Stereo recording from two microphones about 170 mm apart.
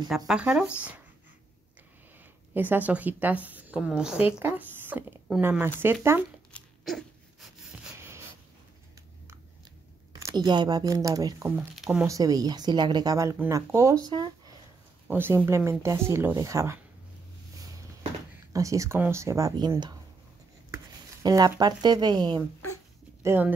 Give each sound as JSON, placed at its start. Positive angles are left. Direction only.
{"t": 0.3, "sound": "speech", "side_deg": -5}
{"t": 2.5, "sound": "a woman's voice", "side_deg": -10}
{"t": 6.5, "sound": "a sound", "side_deg": 0}
{"t": 10.1, "sound": "a woman's voice", "side_deg": -20}
{"t": 11.4, "sound": "speech", "side_deg": -5}
{"t": 12.1, "sound": "a woman's voice", "side_deg": -20}
{"t": 15.0, "sound": "a woman's voice", "side_deg": -15}
{"t": 18.5, "sound": "a woman's voice", "side_deg": -20}
{"t": 23.2, "sound": "speech", "side_deg": -10}